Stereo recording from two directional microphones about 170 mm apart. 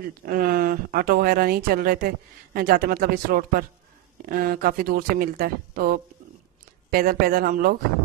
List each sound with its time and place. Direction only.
0.2 s speech: 60° right (ahead or behind)